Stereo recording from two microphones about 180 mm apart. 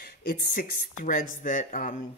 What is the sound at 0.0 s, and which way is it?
Speech, 50° left (ahead or behind).